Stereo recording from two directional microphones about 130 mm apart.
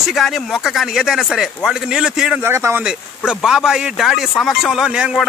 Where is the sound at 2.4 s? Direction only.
20° right (ahead or behind).